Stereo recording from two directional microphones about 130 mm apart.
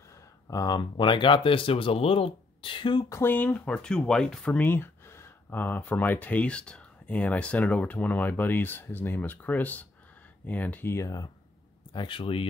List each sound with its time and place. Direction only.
0.5 s speech: 30° left (ahead or behind)
3.1 s speech: 15° left (ahead or behind)
11.9 s speech: 40° left (ahead or behind)